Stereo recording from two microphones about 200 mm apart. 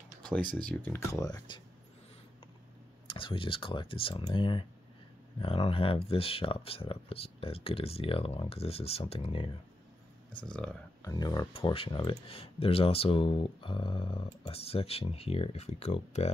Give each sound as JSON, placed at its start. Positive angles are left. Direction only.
{"t": 0.2, "sound": "a sound", "side_deg": 5}
{"t": 0.6, "sound": "speech", "side_deg": 5}
{"t": 3.2, "sound": "speech", "side_deg": 25}
{"t": 10.4, "sound": "speech", "side_deg": 5}
{"t": 11.1, "sound": "speech", "side_deg": 20}